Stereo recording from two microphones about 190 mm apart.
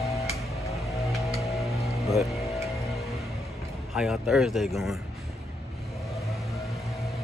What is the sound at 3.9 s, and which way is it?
Speech, centre (ahead or behind).